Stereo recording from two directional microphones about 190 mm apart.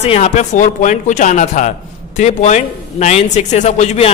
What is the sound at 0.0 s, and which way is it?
A man's voice, 35° left (ahead or behind).